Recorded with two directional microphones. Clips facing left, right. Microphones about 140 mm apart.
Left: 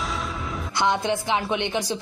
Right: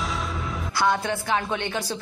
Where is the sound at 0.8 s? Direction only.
20° left (ahead or behind).